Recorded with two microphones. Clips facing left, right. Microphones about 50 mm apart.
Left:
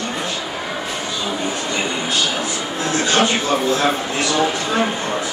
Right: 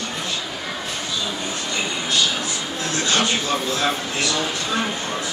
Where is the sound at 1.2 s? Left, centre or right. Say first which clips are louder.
Left 4 dB; left.